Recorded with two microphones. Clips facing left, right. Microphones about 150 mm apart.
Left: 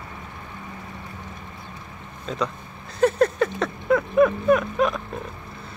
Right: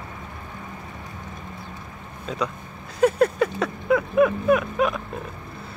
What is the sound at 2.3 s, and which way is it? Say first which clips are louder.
Speech: left 1 dB; 5° right (ahead or behind).